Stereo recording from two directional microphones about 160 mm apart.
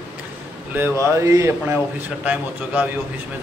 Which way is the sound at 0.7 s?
15° right (ahead or behind).